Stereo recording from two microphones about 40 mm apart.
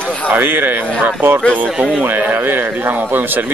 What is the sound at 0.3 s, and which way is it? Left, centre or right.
A man's voice, right.